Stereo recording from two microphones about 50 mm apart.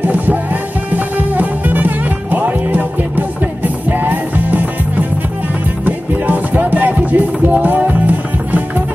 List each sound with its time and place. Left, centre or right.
0.0 s music: right
5.9 s music: right